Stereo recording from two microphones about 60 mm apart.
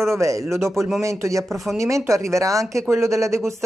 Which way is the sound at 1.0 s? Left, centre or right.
Right.